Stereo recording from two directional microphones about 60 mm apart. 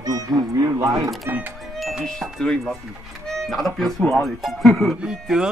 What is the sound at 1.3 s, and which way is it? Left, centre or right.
Speech, right.